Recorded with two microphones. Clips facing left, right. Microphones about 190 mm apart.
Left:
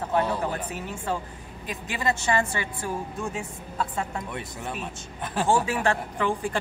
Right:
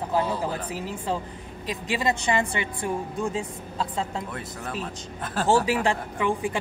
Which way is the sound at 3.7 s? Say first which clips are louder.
Right 1 dB; 20° right (ahead or behind).